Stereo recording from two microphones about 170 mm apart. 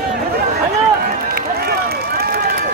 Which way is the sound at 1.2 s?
65° right (ahead or behind).